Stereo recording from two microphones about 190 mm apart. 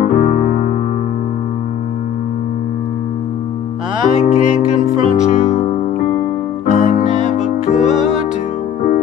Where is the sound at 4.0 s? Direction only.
40° left (ahead or behind).